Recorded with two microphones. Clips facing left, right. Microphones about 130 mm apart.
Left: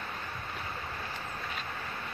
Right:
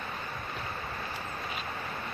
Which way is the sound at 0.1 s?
5° right (ahead or behind).